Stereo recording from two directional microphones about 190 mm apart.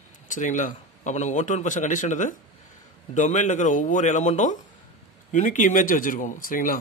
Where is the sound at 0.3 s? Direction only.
40° left (ahead or behind).